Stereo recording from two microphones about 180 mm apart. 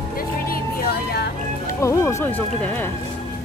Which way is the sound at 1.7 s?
15° left (ahead or behind).